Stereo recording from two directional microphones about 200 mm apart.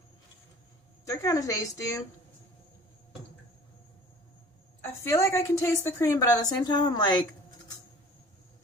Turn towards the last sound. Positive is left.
turn(degrees=20)  # may be behind; listen again after turning